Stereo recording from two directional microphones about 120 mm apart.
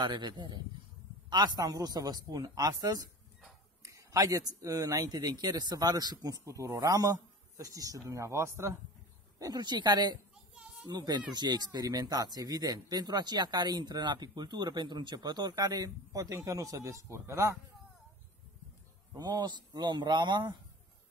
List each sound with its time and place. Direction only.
0.0 s speech: 40° right (ahead or behind); by 8.7 s 20° right (ahead or behind)
9.4 s speech: 35° right (ahead or behind)
10.5 s children playing: 10° right (ahead or behind)
10.9 s speech: 35° right (ahead or behind)
19.1 s speech: 35° right (ahead or behind)